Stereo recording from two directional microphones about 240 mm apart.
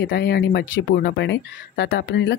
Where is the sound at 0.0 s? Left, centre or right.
Left.